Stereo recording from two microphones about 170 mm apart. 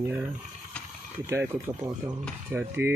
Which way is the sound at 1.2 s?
15° right (ahead or behind).